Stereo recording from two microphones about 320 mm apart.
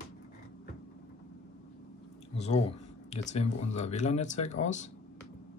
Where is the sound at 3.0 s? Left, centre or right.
Left.